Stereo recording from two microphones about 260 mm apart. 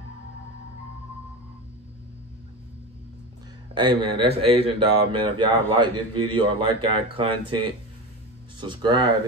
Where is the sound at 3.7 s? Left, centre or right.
Centre.